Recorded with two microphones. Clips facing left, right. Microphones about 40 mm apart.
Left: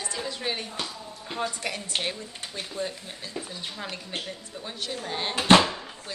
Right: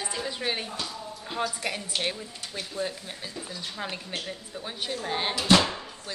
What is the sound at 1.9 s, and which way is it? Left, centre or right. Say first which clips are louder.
Speech: even; left.